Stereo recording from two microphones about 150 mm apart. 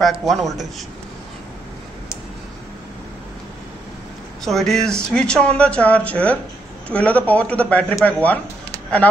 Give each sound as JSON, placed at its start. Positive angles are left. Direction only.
{"t": 0.0, "sound": "a man's voice", "side_deg": 0}
{"t": 4.5, "sound": "speech", "side_deg": 0}